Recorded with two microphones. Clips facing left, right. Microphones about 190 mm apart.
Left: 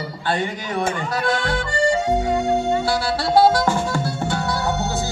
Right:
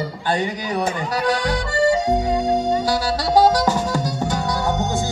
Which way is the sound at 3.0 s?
40° right (ahead or behind).